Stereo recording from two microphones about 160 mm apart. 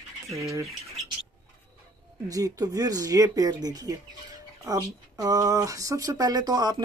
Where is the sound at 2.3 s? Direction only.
20° right (ahead or behind).